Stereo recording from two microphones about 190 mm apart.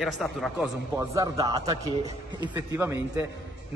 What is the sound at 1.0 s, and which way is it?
A man's voice, 15° right (ahead or behind).